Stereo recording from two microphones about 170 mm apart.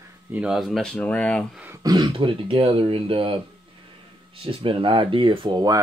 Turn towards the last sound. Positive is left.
turn(degrees=-25)  # may be behind; listen again after turning